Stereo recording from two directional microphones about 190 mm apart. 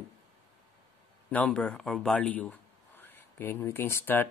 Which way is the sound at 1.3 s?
5° left (ahead or behind).